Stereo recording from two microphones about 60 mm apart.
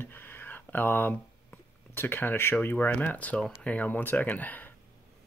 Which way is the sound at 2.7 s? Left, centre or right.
Left.